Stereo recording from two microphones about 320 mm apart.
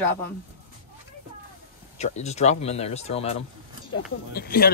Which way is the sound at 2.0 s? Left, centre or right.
Left.